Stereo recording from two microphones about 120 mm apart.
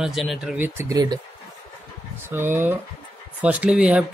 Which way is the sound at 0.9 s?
35° right (ahead or behind).